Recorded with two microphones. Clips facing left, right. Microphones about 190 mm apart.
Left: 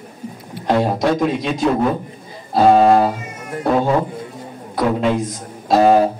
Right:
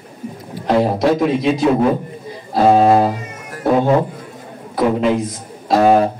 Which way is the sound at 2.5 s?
Centre (ahead or behind).